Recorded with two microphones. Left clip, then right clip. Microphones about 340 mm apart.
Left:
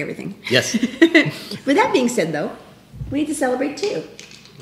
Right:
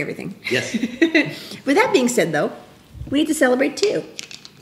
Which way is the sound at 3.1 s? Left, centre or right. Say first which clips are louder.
Right 3 dB; right.